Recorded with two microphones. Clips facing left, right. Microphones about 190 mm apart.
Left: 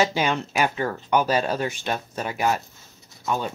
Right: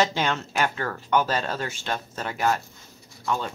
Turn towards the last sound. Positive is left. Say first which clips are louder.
# left 2 dB
turn(degrees=20)  # may be behind; listen again after turning